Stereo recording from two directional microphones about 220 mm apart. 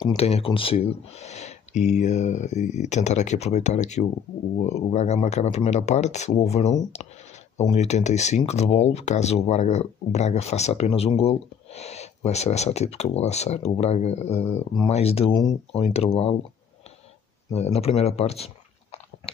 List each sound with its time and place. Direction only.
0.0 s speech: 25° left (ahead or behind)
17.5 s speech: 30° left (ahead or behind)